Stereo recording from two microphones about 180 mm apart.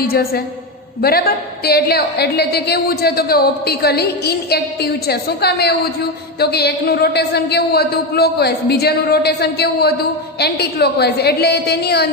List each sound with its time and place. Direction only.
0.0 s a woman's voice: 55° left (ahead or behind)